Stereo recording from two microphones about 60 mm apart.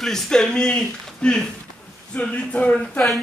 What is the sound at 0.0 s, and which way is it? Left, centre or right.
Speech, centre.